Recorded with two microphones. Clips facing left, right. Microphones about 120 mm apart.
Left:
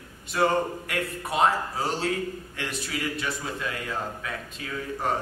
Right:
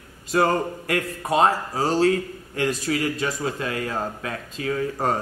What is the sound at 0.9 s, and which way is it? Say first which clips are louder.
A man's voice: right 8 dB; 40° right (ahead or behind).